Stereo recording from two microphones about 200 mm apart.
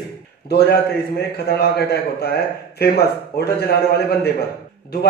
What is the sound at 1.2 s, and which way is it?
A man's voice, 55° left (ahead or behind).